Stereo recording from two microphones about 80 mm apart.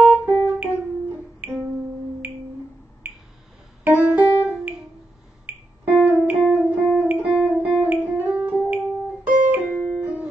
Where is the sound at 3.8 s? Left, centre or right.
Right.